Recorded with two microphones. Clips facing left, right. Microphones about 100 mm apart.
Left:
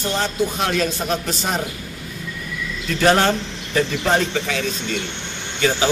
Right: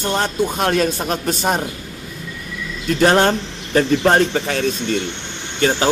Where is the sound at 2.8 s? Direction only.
40° right (ahead or behind).